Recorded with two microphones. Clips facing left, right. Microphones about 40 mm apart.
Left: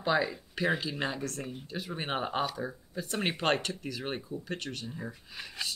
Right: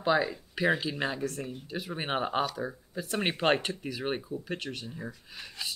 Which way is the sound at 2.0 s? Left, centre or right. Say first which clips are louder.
Right 3 dB; centre.